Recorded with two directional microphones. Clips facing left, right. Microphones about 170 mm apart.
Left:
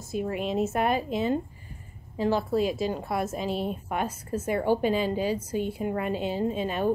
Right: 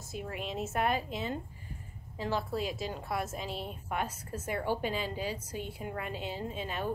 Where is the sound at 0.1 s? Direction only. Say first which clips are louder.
Left 10 dB; 15° left (ahead or behind).